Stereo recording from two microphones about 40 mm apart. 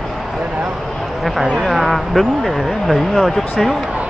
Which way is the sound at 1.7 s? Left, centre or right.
Centre.